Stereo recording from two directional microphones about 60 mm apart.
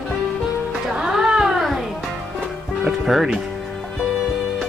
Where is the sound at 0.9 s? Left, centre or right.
Centre.